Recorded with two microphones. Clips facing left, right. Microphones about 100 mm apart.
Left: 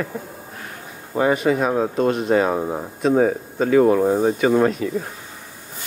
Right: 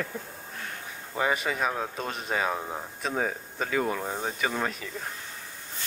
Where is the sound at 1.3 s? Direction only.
5° left (ahead or behind).